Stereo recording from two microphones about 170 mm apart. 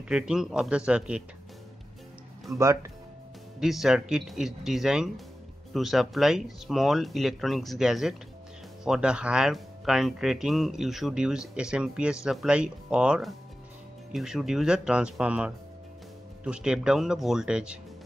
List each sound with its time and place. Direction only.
0.1 s speech: 5° right (ahead or behind)
2.5 s speech: 15° right (ahead or behind)
3.5 s speech: centre (ahead or behind)